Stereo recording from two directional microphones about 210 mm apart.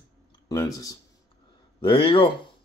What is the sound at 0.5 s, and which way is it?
Speech, 15° left (ahead or behind).